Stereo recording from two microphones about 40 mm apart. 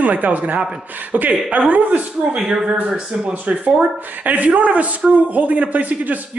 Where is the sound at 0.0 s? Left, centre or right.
Right.